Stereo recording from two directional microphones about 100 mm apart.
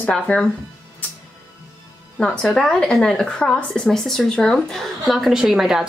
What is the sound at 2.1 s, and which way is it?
Speech, 10° left (ahead or behind).